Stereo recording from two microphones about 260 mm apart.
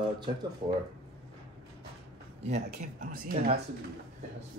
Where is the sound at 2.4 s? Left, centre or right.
Right.